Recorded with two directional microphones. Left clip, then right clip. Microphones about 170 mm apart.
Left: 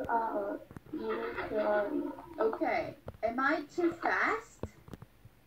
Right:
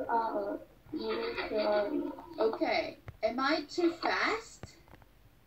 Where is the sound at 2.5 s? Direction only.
20° left (ahead or behind).